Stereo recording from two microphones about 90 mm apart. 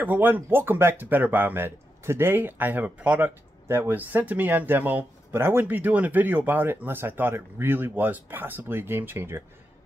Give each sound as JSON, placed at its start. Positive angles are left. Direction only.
{"t": 0.0, "sound": "speech", "side_deg": -20}